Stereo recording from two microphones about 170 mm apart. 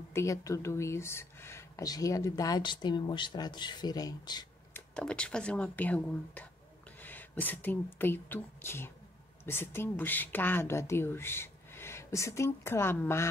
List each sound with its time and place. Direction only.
0.1 s speech: 15° left (ahead or behind)
4.7 s speech: 5° left (ahead or behind)